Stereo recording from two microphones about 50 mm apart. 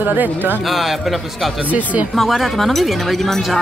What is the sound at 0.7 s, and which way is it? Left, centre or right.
Speech, centre.